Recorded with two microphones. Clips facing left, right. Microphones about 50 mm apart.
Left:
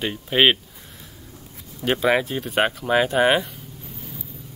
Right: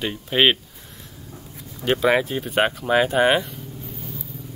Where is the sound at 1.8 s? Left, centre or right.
Centre.